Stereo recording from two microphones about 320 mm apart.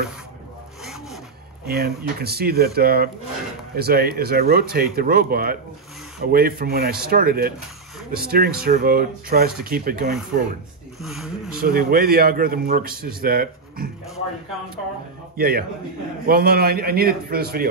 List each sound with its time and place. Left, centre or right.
1.7 s a man's voice: right
11.0 s speech: centre
11.6 s a man's voice: right
15.3 s a man's voice: right